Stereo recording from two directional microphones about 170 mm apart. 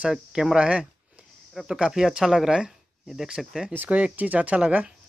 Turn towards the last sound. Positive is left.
turn(degrees=-5)  # may be behind; listen again after turning